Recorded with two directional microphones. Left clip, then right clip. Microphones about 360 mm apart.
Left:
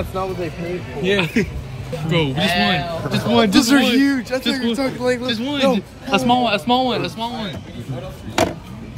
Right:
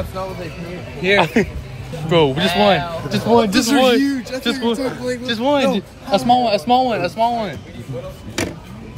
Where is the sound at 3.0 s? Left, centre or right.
Centre.